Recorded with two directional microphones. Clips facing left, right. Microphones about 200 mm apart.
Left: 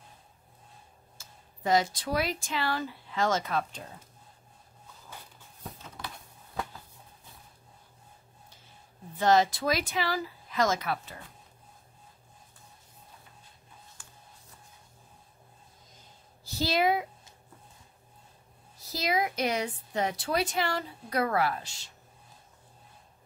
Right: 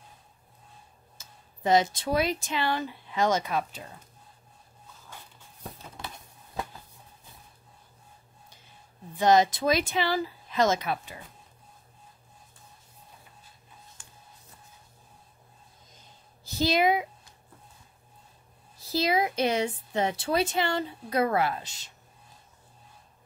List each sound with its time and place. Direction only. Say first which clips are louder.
1.1 s speech: right 2 dB; 25° right (ahead or behind)
5.9 s a sound: right 1 dB; 25° right (ahead or behind)
9.1 s a woman's voice: right 2 dB; 15° right (ahead or behind)
14.0 s music: even; 25° right (ahead or behind)
16.5 s a woman's voice: right 3 dB; 20° right (ahead or behind)
18.9 s a woman's voice: right 4 dB; 30° right (ahead or behind)